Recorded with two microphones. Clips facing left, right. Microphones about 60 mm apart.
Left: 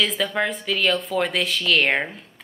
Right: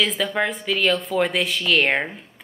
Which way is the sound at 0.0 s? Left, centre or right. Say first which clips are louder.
Right 1 dB; centre.